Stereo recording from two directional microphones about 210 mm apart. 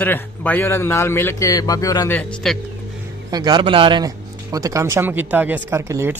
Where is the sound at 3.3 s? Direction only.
20° right (ahead or behind).